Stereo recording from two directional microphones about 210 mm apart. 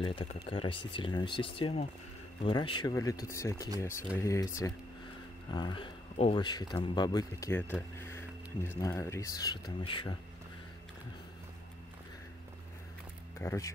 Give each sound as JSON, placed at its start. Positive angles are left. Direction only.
{"t": 0.0, "sound": "speech", "side_deg": 25}
{"t": 13.4, "sound": "speech", "side_deg": 15}